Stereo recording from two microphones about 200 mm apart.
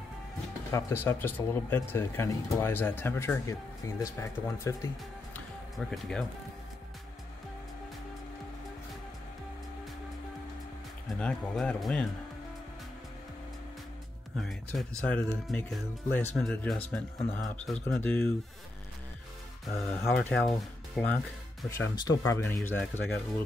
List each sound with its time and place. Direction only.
0.7 s speech: 15° left (ahead or behind)
5.8 s speech: centre (ahead or behind)
11.1 s speech: 5° left (ahead or behind)
14.4 s speech: centre (ahead or behind)
20.0 s speech: 10° left (ahead or behind)